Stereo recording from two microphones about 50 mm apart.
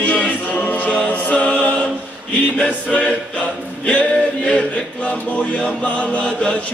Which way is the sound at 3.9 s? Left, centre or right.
Left.